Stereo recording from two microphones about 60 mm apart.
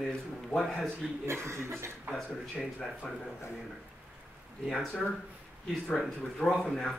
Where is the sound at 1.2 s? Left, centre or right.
Right.